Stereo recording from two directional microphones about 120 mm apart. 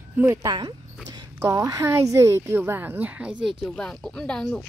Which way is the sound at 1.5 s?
25° right (ahead or behind).